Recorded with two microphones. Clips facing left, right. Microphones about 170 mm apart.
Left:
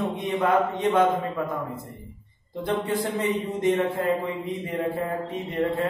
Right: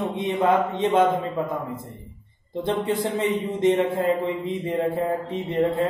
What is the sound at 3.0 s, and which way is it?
Mantra, 25° right (ahead or behind).